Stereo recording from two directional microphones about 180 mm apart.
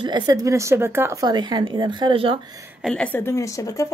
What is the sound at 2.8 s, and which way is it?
A woman's voice, 5° left (ahead or behind).